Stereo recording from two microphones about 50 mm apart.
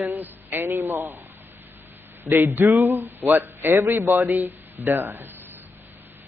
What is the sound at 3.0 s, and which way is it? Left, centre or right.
Speech, right.